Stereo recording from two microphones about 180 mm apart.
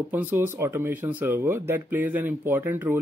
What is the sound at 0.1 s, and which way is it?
Speech, 10° right (ahead or behind).